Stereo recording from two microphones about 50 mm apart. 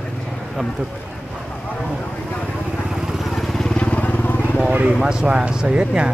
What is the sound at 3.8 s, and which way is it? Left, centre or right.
Vehicle, left.